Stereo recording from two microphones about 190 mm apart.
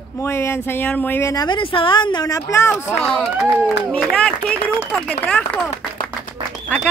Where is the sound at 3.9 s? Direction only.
5° left (ahead or behind).